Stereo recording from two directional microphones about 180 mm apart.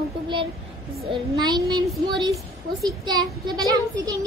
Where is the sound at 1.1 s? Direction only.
25° right (ahead or behind).